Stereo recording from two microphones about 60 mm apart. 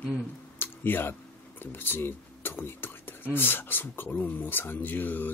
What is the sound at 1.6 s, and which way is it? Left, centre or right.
Speech, left.